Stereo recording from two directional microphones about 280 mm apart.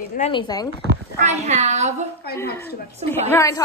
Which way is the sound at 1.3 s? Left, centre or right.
Right.